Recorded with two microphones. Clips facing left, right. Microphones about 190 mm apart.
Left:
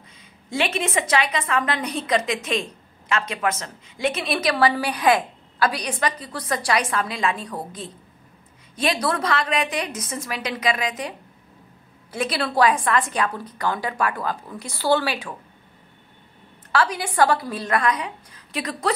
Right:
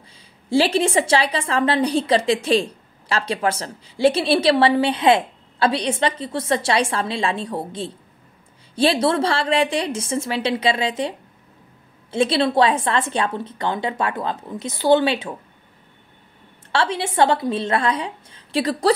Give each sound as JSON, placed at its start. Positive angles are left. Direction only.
{"t": 0.5, "sound": "a woman's voice", "side_deg": -30}
{"t": 16.7, "sound": "a woman's voice", "side_deg": -25}